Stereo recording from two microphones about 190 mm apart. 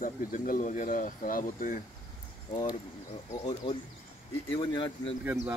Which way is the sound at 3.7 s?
25° left (ahead or behind).